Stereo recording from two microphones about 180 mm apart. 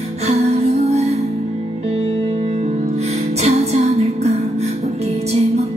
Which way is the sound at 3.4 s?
35° right (ahead or behind).